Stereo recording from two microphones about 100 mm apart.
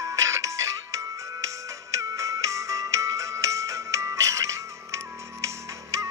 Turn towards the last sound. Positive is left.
turn(degrees=-35)  # may be behind; listen again after turning